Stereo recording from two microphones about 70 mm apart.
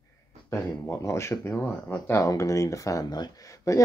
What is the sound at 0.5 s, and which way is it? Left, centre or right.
Speech, left.